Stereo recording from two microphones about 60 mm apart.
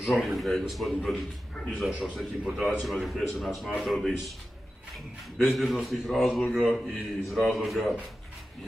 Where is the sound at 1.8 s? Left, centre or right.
Centre.